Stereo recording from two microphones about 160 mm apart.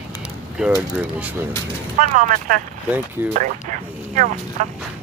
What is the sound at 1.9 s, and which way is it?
Speech, 55° right (ahead or behind).